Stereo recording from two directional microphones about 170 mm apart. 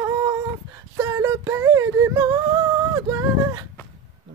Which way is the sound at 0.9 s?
20° right (ahead or behind).